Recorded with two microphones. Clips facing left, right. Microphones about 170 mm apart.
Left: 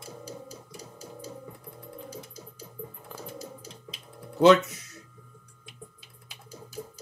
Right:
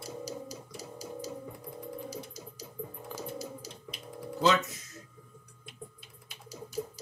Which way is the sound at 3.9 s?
70° left (ahead or behind).